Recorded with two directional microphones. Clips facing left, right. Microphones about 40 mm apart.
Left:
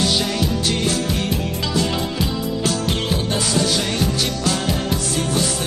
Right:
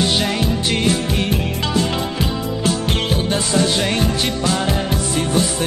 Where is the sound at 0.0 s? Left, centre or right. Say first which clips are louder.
Right 2 dB; right.